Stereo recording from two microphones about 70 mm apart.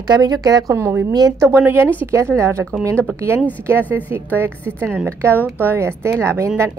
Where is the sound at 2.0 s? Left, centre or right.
Right.